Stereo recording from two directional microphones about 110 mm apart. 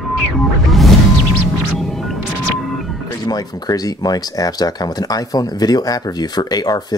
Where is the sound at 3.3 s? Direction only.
35° left (ahead or behind).